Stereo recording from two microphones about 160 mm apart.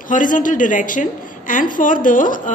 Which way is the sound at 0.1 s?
55° left (ahead or behind).